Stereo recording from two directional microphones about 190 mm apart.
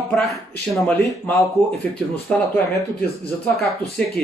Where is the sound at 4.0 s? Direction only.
5° left (ahead or behind).